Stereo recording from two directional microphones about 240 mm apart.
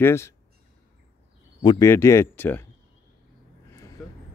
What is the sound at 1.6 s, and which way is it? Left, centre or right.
Speech, centre.